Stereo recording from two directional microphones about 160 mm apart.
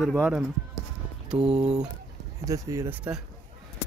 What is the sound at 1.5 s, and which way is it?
Speech, 45° right (ahead or behind).